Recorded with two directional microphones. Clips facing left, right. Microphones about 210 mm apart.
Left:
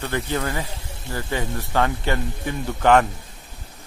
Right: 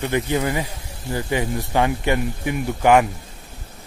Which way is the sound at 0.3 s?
10° right (ahead or behind).